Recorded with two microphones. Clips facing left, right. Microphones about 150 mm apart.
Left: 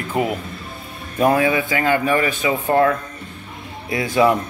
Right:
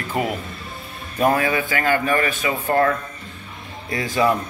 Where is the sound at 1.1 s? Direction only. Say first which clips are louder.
Left 3 dB; 15° left (ahead or behind).